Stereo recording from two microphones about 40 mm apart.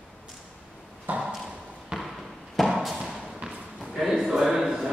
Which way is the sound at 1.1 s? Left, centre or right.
Right.